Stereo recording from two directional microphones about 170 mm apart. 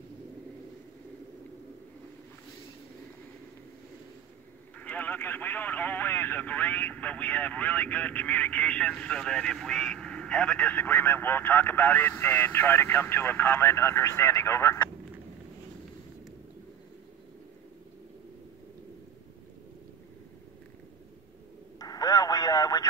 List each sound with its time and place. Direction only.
4.7 s speech: 10° left (ahead or behind)
21.7 s radio: 20° left (ahead or behind)